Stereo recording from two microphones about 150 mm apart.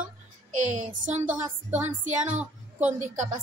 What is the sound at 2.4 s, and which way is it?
Speech, 10° right (ahead or behind).